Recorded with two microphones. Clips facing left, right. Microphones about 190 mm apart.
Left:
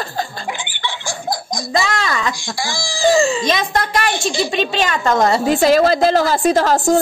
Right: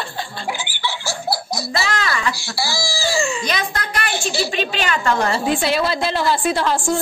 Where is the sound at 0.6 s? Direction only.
5° right (ahead or behind).